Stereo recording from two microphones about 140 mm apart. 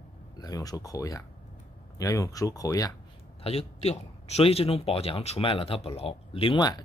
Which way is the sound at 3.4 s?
45° left (ahead or behind).